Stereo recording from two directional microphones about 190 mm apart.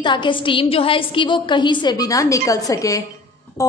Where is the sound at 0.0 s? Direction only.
25° left (ahead or behind).